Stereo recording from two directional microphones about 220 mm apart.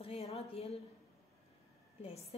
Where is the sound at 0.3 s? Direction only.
25° left (ahead or behind).